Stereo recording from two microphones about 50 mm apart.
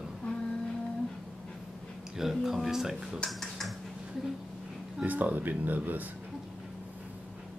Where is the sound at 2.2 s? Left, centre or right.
Centre.